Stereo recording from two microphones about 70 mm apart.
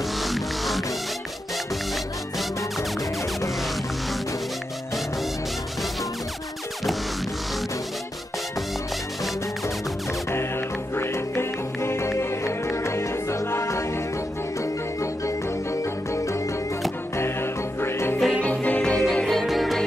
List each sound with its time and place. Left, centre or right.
0.2 s music: centre
11.0 s music: left
15.2 s music: left
17.2 s music: left
18.4 s music: centre
19.2 s music: centre